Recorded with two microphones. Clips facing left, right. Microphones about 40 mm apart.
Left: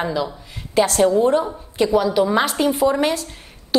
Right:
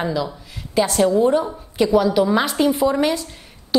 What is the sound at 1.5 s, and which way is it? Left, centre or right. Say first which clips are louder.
A woman's voice: right 1 dB; centre.